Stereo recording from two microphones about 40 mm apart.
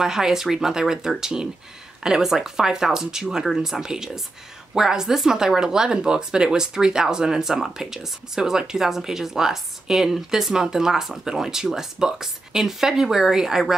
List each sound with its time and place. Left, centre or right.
0.0 s speech: centre